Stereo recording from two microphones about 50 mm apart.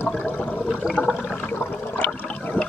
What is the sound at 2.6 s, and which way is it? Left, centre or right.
Water, left.